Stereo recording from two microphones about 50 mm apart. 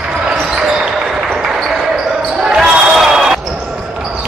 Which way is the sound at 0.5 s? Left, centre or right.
Centre.